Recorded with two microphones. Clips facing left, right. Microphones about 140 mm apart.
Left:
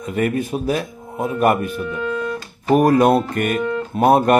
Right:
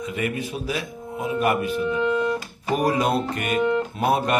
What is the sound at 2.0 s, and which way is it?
Music, 20° right (ahead or behind).